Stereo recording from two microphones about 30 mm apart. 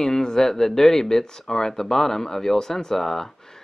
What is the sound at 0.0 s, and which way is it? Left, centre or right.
Speech, centre.